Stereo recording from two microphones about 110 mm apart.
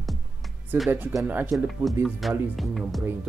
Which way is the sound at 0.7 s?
20° right (ahead or behind).